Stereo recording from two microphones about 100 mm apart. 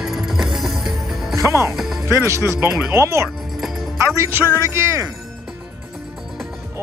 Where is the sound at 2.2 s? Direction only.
30° right (ahead or behind).